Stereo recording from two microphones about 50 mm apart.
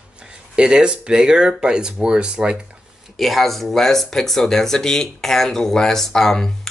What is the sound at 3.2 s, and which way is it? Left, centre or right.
Speech, centre.